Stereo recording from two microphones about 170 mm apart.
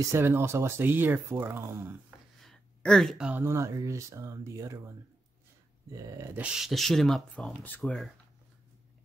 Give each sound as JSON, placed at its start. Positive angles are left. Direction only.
{"t": 0.0, "sound": "speech", "side_deg": -15}
{"t": 2.4, "sound": "speech", "side_deg": 5}
{"t": 6.4, "sound": "speech", "side_deg": 0}